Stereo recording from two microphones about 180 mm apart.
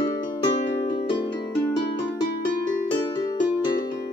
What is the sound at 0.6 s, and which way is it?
Harp, 30° left (ahead or behind).